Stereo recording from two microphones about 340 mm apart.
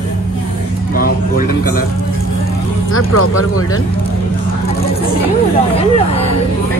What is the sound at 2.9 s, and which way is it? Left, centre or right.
Speech, left.